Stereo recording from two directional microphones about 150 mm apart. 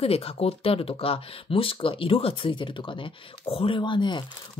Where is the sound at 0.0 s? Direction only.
40° left (ahead or behind).